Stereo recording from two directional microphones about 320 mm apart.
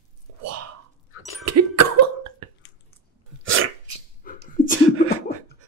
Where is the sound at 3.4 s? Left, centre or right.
Right.